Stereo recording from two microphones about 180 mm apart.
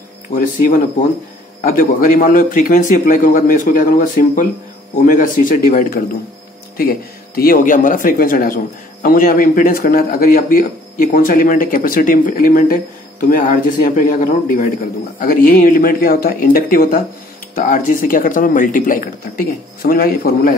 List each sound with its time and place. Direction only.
0.3 s a man's voice: 45° left (ahead or behind)